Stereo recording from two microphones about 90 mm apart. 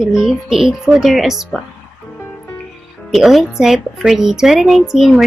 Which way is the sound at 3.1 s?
Centre (ahead or behind).